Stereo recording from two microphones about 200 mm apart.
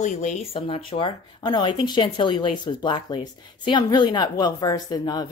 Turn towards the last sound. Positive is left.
turn(degrees=20)  # may be behind; listen again after turning